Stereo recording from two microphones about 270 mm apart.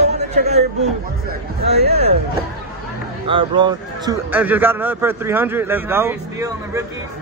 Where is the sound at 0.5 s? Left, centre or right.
Right.